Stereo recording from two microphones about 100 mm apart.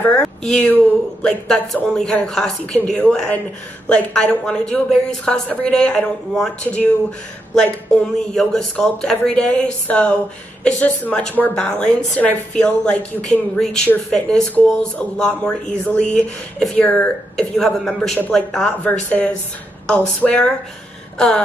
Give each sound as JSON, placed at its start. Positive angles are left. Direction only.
{"t": 0.0, "sound": "speech", "side_deg": 10}
{"t": 18.9, "sound": "speech", "side_deg": 15}